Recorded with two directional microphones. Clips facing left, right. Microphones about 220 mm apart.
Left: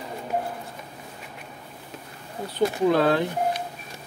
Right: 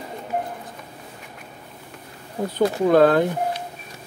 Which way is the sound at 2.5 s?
50° right (ahead or behind).